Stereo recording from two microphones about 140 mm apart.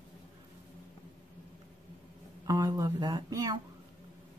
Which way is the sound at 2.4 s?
25° right (ahead or behind).